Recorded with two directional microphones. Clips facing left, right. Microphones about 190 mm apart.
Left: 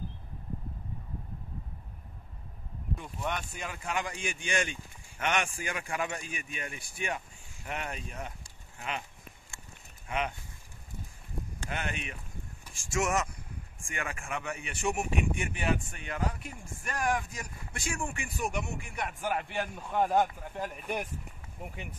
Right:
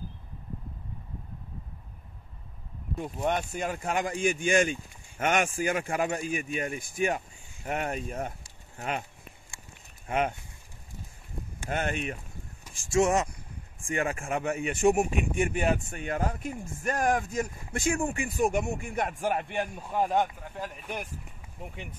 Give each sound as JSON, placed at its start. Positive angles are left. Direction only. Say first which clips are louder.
{"t": 3.0, "sound": "speech", "louder": "right 8 dB", "side_deg": -45}
{"t": 10.0, "sound": "speech", "louder": "right 5 dB", "side_deg": -45}
{"t": 11.7, "sound": "speech", "louder": "right 7 dB", "side_deg": -45}
{"t": 19.1, "sound": "a man's voice", "louder": "right 4 dB", "side_deg": -25}
{"t": 20.5, "sound": "speech", "louder": "left 2 dB", "side_deg": 10}